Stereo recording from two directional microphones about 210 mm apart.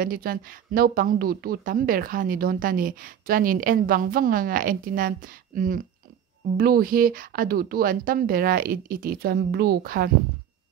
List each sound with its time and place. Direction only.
0.0 s a woman's voice: 45° right (ahead or behind)